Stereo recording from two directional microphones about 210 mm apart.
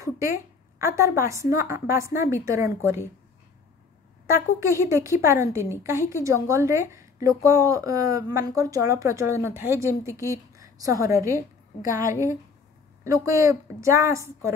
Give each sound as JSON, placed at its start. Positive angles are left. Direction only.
{"t": 0.0, "sound": "a woman's voice", "side_deg": -15}
{"t": 4.3, "sound": "speech", "side_deg": -15}
{"t": 13.0, "sound": "speech", "side_deg": -15}